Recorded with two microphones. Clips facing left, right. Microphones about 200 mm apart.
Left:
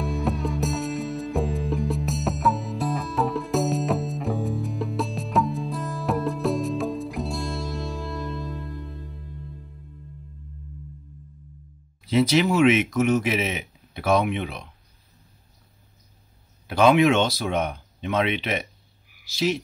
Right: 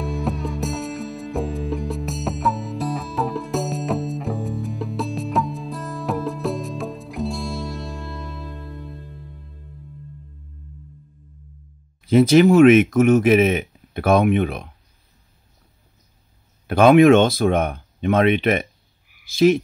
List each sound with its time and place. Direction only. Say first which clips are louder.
0.0 s music: right 1 dB; centre (ahead or behind)
12.1 s speech: right 7 dB; 50° right (ahead or behind)
16.6 s speech: right 6 dB; 55° right (ahead or behind)